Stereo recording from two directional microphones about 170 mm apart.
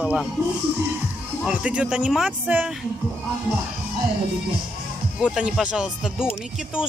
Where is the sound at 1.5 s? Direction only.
5° right (ahead or behind).